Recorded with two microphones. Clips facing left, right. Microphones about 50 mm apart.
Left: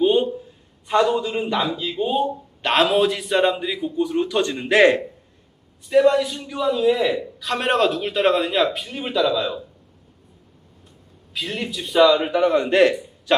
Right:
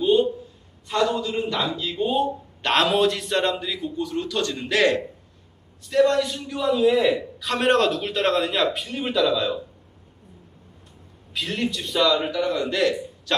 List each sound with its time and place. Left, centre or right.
0.0 s a sound: left
0.8 s a man's voice: centre
5.9 s a man's voice: centre
11.3 s a man's voice: centre; by 12.9 s left